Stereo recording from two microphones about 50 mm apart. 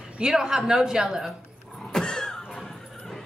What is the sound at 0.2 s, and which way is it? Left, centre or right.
Speech, centre.